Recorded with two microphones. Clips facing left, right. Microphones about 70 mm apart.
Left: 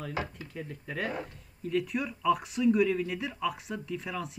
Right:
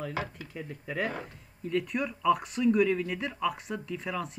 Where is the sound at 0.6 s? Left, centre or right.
Centre.